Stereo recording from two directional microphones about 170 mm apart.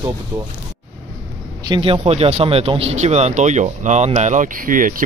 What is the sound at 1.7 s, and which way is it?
Speech, 30° right (ahead or behind).